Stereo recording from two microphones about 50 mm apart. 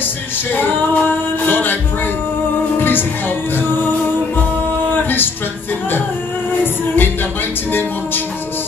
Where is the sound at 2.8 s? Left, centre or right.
Left.